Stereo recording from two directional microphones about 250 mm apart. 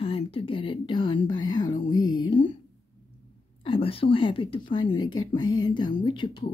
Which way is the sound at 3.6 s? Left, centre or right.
Left.